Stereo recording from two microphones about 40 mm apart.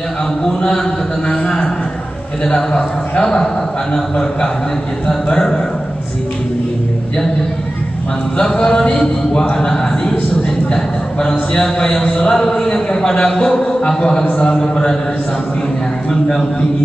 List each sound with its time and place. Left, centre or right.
0.5 s a man's voice: centre
2.4 s a man's voice: centre
8.4 s a man's voice: centre
10.7 s a man's voice: centre
16.1 s a man's voice: centre